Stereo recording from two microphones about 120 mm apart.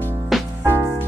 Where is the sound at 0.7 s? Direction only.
20° right (ahead or behind).